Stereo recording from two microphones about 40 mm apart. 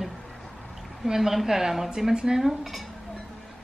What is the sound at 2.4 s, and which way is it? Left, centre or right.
Speech, centre.